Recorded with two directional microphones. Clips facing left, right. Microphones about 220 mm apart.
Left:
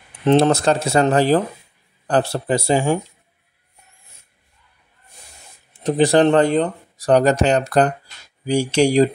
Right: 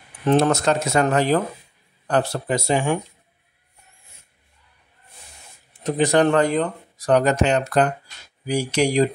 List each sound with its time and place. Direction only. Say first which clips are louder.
0.2 s speech: left 3 dB; 30° left (ahead or behind)
5.7 s speech: left 4 dB; 30° left (ahead or behind)